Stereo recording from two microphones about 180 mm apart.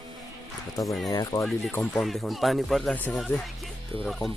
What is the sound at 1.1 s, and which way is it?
Speech, 20° left (ahead or behind).